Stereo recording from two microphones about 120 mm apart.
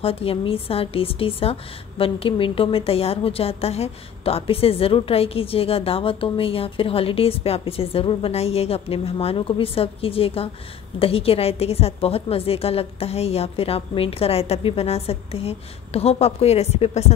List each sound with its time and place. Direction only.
0.0 s a woman's voice: 50° left (ahead or behind)